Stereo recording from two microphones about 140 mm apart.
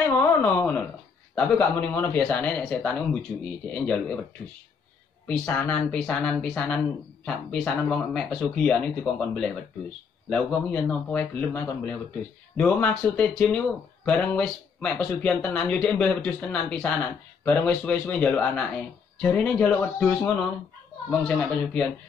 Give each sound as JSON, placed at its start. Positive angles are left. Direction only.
{"t": 0.3, "sound": "a sound", "side_deg": 10}
{"t": 1.3, "sound": "speech", "side_deg": 10}
{"t": 5.2, "sound": "speech", "side_deg": 15}
{"t": 5.7, "sound": "speech", "side_deg": 5}